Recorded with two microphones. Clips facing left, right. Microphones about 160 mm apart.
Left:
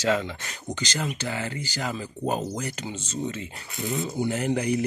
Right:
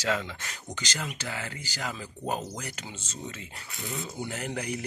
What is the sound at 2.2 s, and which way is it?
Speech, 30° left (ahead or behind).